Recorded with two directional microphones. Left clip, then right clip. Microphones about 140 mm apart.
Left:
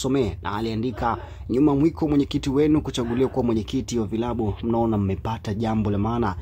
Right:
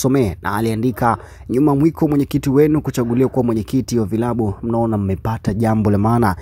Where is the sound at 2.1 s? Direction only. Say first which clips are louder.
Right 5 dB; 40° right (ahead or behind).